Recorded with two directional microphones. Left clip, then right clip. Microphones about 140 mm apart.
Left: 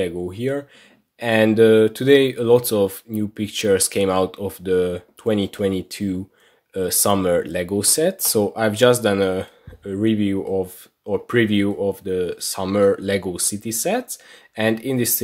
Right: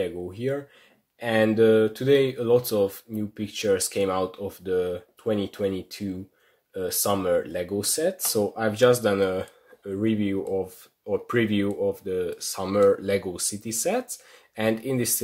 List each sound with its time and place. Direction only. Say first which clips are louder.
0.0 s speech: left 5 dB; 30° left (ahead or behind)
1.2 s speech: left 5 dB; 40° left (ahead or behind); by 15.2 s 20° left (ahead or behind)